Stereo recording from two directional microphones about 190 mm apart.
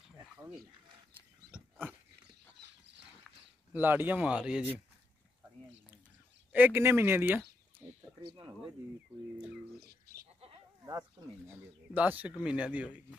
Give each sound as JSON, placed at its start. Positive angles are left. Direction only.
{"t": 1.5, "sound": "dog", "side_deg": -10}
{"t": 2.2, "sound": "a sound", "side_deg": -65}
{"t": 3.7, "sound": "speech", "side_deg": -10}
{"t": 6.5, "sound": "speech", "side_deg": -10}
{"t": 8.2, "sound": "speech", "side_deg": -25}
{"t": 9.8, "sound": "bird", "side_deg": -55}
{"t": 10.9, "sound": "speech", "side_deg": -20}
{"t": 11.9, "sound": "speech", "side_deg": -10}